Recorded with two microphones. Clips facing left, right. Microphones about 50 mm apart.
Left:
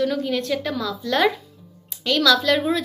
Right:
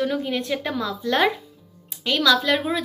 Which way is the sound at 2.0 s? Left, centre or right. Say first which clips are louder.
Left 1 dB; centre.